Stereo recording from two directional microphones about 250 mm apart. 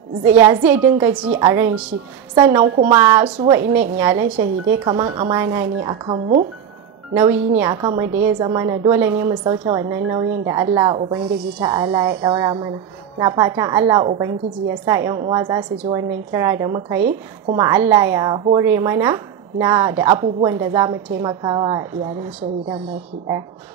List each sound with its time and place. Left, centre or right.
0.2 s a woman's voice: centre
2.6 s a woman's voice: right
3.0 s a woman's voice: centre; by 6.4 s right
7.2 s a woman's voice: centre